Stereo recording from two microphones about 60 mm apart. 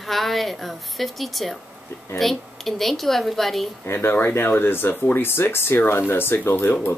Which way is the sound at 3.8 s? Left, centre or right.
Left.